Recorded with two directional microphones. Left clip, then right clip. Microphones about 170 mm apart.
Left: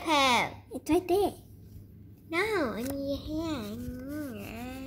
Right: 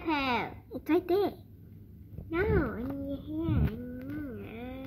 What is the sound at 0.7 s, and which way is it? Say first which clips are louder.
Speech: left 1 dB; 5° left (ahead or behind).